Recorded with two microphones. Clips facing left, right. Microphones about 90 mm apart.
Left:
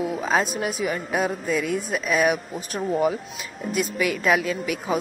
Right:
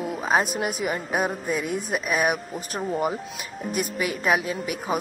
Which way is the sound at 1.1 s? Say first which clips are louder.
Left 2 dB; 15° right (ahead or behind).